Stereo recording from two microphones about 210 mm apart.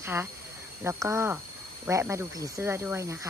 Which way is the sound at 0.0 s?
10° right (ahead or behind).